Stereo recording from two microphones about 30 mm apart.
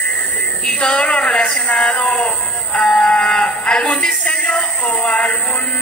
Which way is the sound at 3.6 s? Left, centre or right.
Left.